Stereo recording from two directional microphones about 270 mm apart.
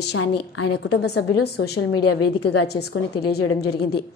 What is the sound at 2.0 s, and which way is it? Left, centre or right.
Speech, left.